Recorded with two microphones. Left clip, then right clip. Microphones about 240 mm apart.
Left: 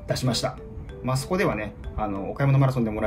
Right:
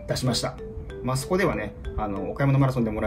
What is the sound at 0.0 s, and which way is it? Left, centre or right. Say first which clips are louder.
Speech: left 1 dB; centre.